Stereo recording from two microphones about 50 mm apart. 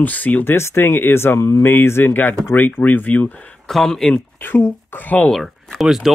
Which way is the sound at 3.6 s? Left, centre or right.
Centre.